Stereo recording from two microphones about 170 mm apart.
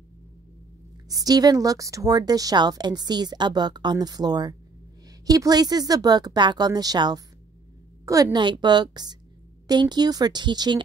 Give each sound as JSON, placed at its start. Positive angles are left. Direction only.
{"t": 1.0, "sound": "a woman's voice", "side_deg": -20}